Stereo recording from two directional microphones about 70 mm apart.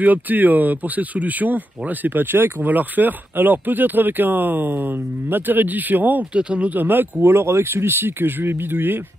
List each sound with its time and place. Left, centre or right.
0.0 s speech: right